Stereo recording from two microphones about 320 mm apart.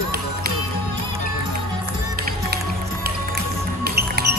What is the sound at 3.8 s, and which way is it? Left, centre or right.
Music, right.